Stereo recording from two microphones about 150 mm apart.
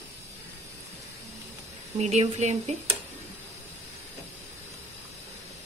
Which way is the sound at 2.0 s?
50° right (ahead or behind).